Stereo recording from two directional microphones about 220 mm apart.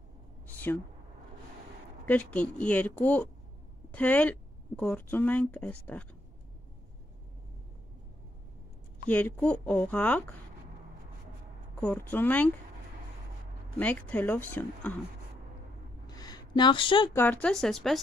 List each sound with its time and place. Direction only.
0.5 s a sound: 10° left (ahead or behind)
2.0 s a woman's voice: 5° left (ahead or behind)
9.1 s a woman's voice: 5° left (ahead or behind)
12.1 s a woman's voice: 5° left (ahead or behind)
13.7 s a woman's voice: 5° left (ahead or behind)
16.1 s a sound: 15° left (ahead or behind)
17.1 s speech: 10° left (ahead or behind)